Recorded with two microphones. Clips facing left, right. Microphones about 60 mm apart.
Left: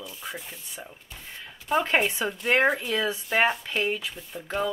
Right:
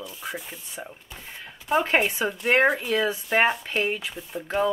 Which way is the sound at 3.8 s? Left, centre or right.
Right.